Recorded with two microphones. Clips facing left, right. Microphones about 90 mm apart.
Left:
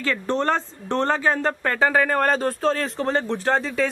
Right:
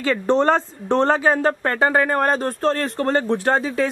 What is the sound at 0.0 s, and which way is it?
Speech, 20° right (ahead or behind).